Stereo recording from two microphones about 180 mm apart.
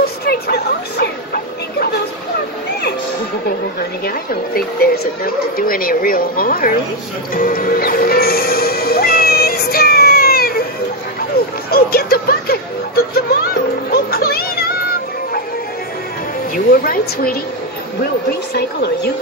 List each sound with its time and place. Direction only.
0.0 s a sound: 60° left (ahead or behind)
4.0 s speech: 55° left (ahead or behind)
7.3 s music: 55° left (ahead or behind)
16.5 s a woman's voice: 55° left (ahead or behind)